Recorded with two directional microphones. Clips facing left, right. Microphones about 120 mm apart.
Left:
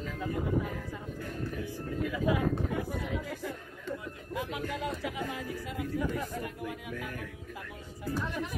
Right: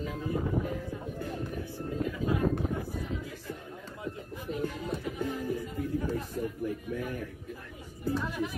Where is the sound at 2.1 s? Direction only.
90° left.